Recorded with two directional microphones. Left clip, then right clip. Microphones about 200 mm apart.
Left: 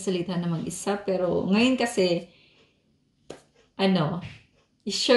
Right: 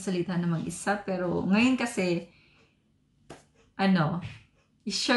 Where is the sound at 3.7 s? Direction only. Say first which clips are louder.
Left 2 dB; centre (ahead or behind).